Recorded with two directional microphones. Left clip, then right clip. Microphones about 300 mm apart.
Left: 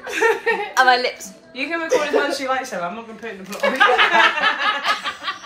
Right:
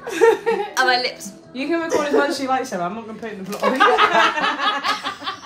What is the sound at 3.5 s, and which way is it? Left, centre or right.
Speech, right.